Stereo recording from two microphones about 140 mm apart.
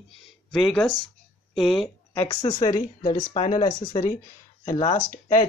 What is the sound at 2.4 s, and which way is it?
Speech, 30° left (ahead or behind).